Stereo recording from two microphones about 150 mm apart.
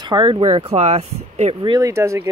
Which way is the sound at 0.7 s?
45° right (ahead or behind).